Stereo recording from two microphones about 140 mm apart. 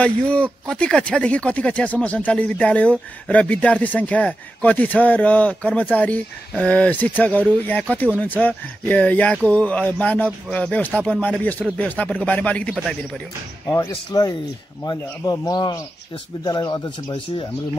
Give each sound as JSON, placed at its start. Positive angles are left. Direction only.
{"t": 0.0, "sound": "speech", "side_deg": 10}
{"t": 13.7, "sound": "a man's voice", "side_deg": 25}